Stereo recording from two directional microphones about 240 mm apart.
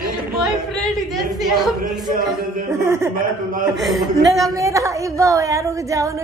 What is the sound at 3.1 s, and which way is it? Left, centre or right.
Speech, right.